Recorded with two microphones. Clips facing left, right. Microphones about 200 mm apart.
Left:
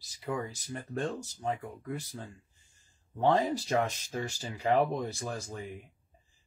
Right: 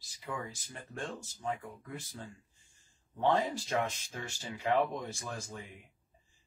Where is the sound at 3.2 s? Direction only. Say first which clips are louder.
Left 3 dB; 35° left (ahead or behind).